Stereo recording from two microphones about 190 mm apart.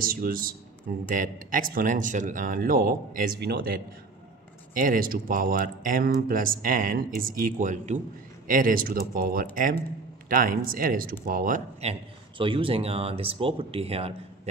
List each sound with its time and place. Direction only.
0.0 s speech: 50° right (ahead or behind); by 14.5 s 30° right (ahead or behind)